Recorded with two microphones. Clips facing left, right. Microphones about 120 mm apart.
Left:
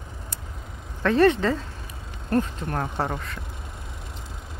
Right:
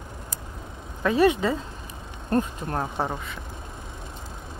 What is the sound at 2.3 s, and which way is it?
Speech, 25° right (ahead or behind).